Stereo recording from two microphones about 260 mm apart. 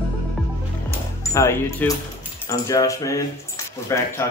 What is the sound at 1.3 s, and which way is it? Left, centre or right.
Speech, centre.